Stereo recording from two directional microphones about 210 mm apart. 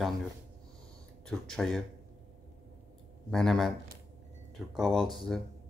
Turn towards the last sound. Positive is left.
turn(degrees=0)  # may be behind; listen again after turning